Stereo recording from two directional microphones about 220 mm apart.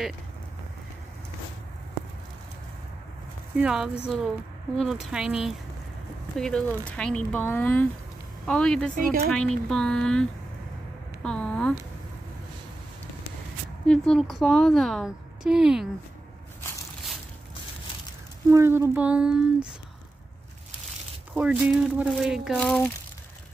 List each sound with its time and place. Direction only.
3.5 s speech: 5° right (ahead or behind)
11.2 s a sound: 5° left (ahead or behind)
13.8 s speech: 5° left (ahead or behind)
18.5 s speech: 10° right (ahead or behind)
21.3 s speech: 5° right (ahead or behind)